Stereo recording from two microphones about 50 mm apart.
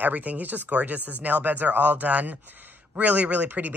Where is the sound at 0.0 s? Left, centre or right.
Right.